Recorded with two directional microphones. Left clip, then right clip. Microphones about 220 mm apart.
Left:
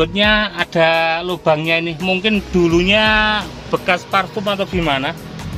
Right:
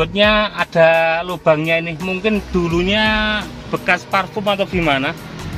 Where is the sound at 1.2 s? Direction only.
35° left (ahead or behind); by 5.4 s 5° left (ahead or behind).